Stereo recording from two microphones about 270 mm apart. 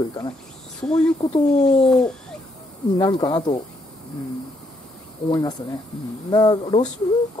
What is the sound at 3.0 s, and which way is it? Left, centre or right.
Speech, centre.